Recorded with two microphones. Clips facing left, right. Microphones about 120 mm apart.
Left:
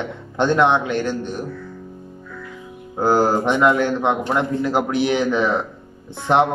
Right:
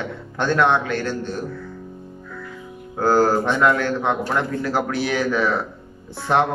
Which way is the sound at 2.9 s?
15° left (ahead or behind).